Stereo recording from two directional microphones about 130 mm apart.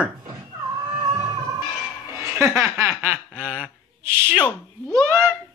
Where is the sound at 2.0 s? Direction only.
20° right (ahead or behind).